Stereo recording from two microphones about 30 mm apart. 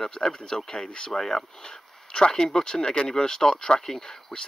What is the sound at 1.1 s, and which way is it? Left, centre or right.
Speech, centre.